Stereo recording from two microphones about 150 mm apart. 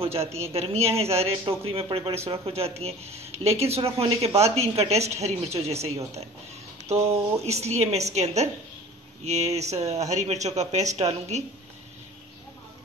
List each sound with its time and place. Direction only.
0.0 s speech: 40° right (ahead or behind)